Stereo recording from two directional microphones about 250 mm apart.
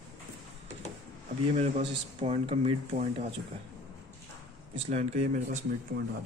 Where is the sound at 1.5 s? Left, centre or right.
Right.